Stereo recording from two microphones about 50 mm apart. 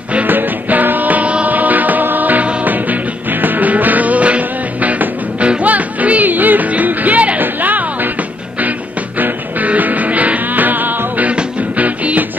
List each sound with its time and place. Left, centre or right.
0.1 s music: right
9.2 s music: right